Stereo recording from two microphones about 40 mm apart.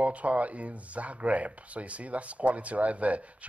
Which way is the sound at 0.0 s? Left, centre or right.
Right.